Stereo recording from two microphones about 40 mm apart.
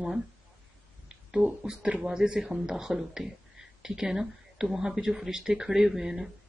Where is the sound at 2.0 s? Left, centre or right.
Centre.